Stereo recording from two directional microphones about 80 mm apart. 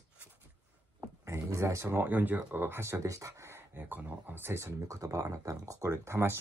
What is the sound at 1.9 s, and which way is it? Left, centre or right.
Speech, right.